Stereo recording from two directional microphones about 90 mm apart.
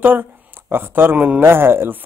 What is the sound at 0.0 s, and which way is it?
A man's voice, 20° right (ahead or behind).